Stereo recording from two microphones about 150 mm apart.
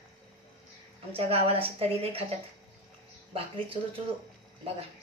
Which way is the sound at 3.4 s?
35° right (ahead or behind).